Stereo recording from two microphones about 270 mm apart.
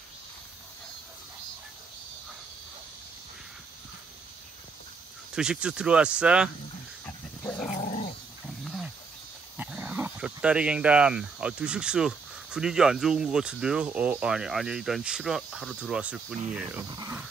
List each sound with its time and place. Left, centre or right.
5.3 s speech: centre
7.4 s dog: centre
7.7 s dog: left
8.6 s wild animals: centre
9.6 s speech: centre